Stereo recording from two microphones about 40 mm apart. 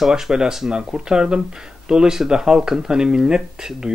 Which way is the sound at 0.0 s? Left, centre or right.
Centre.